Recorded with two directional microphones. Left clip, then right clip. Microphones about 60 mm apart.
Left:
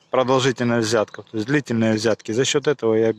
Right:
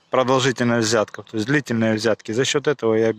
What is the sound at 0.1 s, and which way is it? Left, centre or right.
Speech, centre.